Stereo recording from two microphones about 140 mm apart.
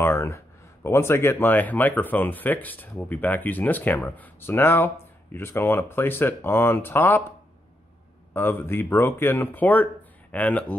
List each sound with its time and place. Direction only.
0.0 s speech: 20° left (ahead or behind)